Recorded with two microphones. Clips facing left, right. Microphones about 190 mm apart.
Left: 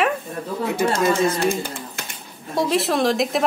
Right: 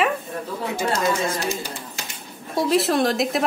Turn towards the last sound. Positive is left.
turn(degrees=0)  # may be behind; listen again after turning